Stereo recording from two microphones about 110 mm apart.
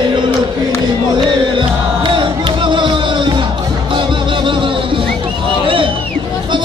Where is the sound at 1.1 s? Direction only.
45° right (ahead or behind).